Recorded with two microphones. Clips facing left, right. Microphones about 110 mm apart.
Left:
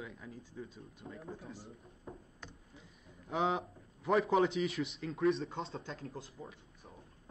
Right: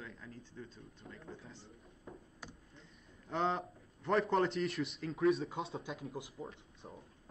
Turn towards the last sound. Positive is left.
turn(degrees=-10)  # may be behind; listen again after turning